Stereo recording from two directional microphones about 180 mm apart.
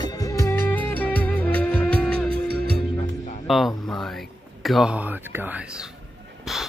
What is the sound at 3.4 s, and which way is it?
Speech, centre (ahead or behind).